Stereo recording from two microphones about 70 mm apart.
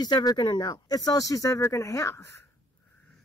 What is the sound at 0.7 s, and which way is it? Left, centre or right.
Speech, left.